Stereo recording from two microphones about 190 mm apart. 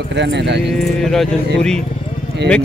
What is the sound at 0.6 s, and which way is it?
Speech, centre (ahead or behind).